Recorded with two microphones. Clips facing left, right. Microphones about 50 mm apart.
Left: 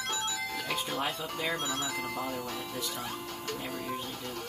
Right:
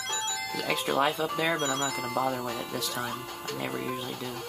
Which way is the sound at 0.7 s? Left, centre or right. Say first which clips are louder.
Right 8 dB; right.